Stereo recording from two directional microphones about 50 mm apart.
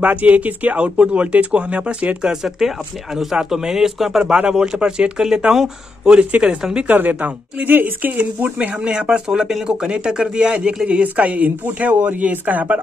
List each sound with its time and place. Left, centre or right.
0.0 s speech: right
3.2 s speech: centre
6.9 s speech: right
8.5 s speech: right